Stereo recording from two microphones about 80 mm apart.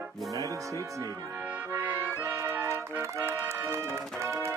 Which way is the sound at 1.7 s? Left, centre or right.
Right.